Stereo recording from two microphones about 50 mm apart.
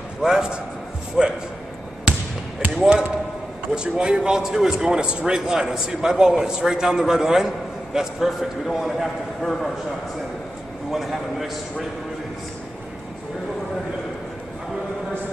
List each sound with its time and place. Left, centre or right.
0.2 s speech: centre
2.1 s basketball bounce: right
3.7 s speech: centre
10.9 s a man's voice: centre